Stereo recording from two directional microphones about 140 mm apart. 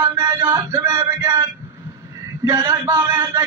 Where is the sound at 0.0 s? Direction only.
20° right (ahead or behind).